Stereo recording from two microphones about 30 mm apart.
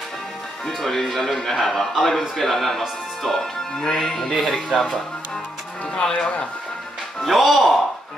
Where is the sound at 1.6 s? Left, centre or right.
Centre.